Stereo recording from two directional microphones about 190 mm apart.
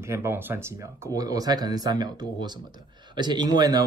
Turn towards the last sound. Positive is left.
turn(degrees=-20)  # may be behind; listen again after turning